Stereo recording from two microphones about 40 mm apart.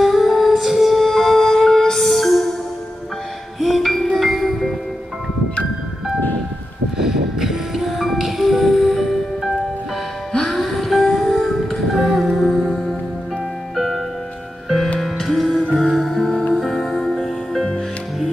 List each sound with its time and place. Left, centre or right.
0.0 s music: centre
3.5 s music: centre
7.0 s music: centre
16.9 s music: centre